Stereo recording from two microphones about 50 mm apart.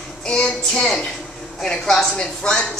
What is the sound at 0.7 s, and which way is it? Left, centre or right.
A woman's voice, centre.